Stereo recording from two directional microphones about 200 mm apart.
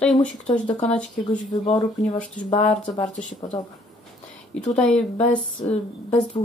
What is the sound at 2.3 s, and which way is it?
Speech, 35° left (ahead or behind).